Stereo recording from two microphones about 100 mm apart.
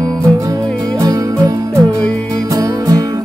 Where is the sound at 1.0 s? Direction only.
40° right (ahead or behind).